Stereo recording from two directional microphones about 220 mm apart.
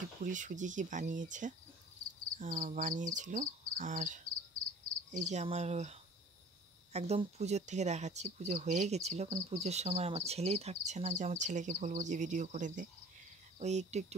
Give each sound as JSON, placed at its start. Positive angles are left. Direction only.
{"t": 0.2, "sound": "speech", "side_deg": -35}